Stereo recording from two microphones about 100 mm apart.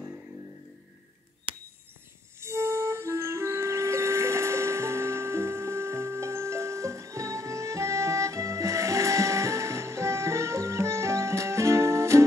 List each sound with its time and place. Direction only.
2.4 s music: 25° right (ahead or behind)